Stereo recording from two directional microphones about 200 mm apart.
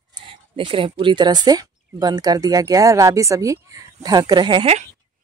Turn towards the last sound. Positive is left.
turn(degrees=-25)  # may be behind; listen again after turning